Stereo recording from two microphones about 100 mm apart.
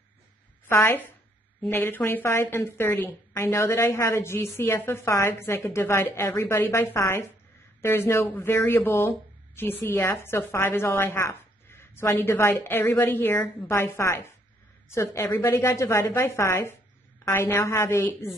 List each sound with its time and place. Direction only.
0.7 s a woman's voice: 25° left (ahead or behind)